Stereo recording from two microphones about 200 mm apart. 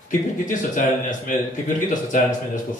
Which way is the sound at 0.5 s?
40° left (ahead or behind).